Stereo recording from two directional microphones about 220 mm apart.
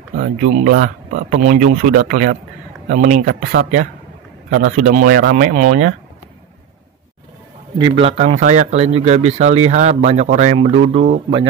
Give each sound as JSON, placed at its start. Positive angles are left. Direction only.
{"t": 0.2, "sound": "speech", "side_deg": -35}
{"t": 7.8, "sound": "speech", "side_deg": -25}